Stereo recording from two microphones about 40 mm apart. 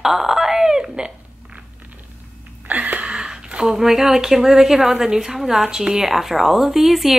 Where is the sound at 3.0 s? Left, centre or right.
Centre.